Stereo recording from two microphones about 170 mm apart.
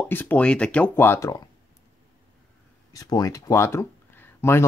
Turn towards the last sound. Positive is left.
turn(degrees=15)  # may be behind; listen again after turning